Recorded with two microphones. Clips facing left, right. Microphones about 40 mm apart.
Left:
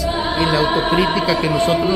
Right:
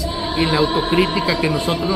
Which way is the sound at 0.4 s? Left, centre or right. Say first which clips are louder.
Right 1 dB; centre.